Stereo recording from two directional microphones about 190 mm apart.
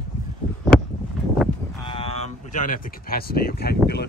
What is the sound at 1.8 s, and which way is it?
Speech, 30° left (ahead or behind).